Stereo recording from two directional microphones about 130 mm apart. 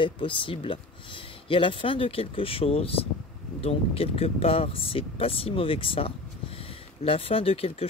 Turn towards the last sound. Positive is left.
turn(degrees=50)  # may be behind; listen again after turning